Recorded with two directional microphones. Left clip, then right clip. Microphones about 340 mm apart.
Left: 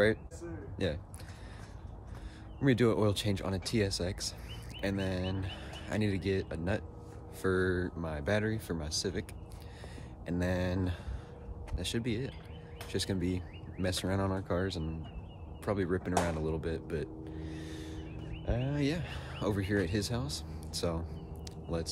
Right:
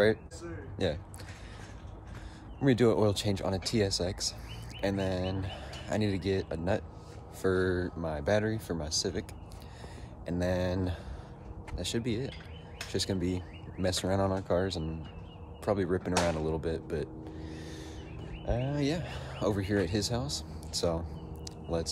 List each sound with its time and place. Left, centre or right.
0.8 s speech: centre
2.6 s speech: centre
10.2 s speech: centre